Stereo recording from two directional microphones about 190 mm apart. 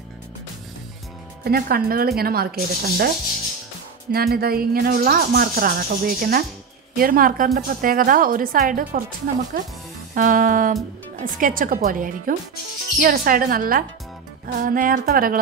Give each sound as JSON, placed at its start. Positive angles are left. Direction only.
{"t": 1.4, "sound": "speech", "side_deg": -55}
{"t": 4.1, "sound": "speech", "side_deg": -55}